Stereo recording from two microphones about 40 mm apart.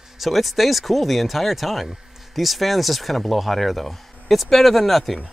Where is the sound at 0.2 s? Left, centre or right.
Centre.